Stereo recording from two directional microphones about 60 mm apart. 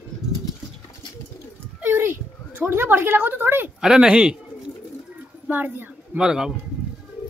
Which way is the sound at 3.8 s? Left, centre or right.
Centre.